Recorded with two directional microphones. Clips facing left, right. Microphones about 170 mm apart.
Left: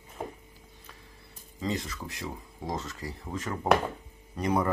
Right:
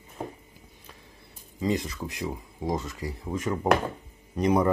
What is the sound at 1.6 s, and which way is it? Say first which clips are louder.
Speech: right 5 dB; 15° right (ahead or behind).